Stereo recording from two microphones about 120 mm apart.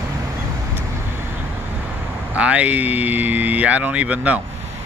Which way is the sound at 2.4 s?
10° right (ahead or behind).